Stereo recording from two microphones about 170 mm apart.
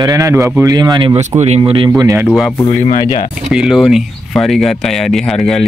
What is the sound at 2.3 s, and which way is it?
Speech, centre (ahead or behind).